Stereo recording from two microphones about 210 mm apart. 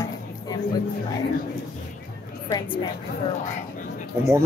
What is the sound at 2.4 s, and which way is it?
Speech, 20° left (ahead or behind).